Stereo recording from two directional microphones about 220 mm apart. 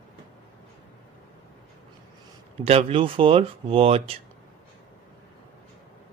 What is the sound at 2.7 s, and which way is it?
Speech, 25° right (ahead or behind).